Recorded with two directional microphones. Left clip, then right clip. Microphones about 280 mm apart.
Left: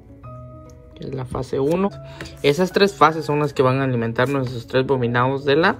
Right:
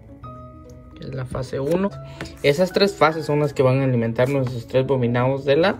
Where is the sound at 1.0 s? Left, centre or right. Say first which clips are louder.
Left 2 dB; centre.